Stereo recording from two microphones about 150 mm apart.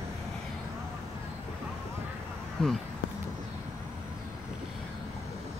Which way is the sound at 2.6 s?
5° left (ahead or behind).